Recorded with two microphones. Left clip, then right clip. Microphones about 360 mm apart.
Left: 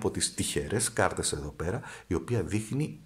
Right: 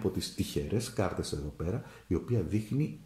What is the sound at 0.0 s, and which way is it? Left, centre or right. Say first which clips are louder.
Speech: left 3 dB; left.